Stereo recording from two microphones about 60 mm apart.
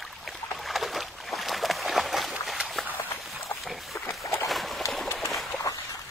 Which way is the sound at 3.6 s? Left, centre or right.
Centre.